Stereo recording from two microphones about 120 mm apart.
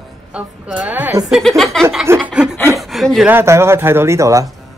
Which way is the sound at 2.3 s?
5° right (ahead or behind).